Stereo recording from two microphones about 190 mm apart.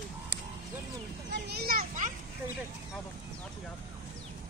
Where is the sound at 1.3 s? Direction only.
55° right (ahead or behind).